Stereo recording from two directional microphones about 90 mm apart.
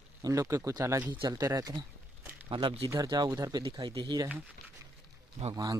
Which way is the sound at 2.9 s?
50° right (ahead or behind).